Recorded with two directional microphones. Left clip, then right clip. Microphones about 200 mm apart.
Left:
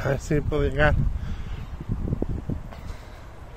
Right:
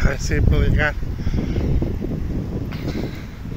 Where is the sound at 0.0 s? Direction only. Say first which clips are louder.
Right 2 dB; 30° left (ahead or behind).